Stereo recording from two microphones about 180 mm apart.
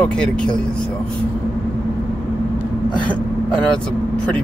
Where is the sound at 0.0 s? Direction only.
5° left (ahead or behind).